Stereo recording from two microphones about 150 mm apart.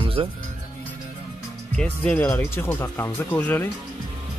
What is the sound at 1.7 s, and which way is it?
Speech, 5° left (ahead or behind).